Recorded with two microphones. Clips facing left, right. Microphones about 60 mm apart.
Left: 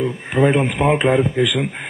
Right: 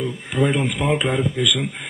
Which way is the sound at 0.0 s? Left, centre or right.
Left.